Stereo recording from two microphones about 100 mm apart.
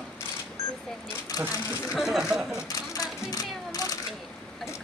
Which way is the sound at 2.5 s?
35° left (ahead or behind).